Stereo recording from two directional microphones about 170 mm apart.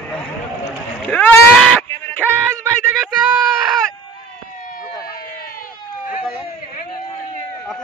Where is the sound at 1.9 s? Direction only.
15° left (ahead or behind).